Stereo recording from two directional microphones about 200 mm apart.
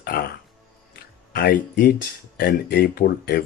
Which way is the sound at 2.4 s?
50° left (ahead or behind).